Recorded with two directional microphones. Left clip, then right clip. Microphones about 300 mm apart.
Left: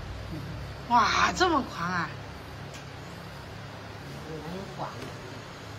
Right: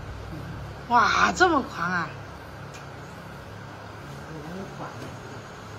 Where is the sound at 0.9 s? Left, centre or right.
Centre.